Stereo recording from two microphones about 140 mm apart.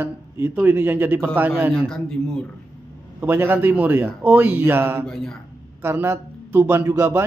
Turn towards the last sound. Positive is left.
turn(degrees=-20)  # may be behind; listen again after turning